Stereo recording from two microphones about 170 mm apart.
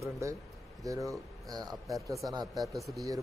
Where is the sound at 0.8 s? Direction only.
20° right (ahead or behind).